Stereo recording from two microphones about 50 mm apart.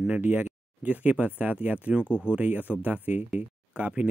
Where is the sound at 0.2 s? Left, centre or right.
Right.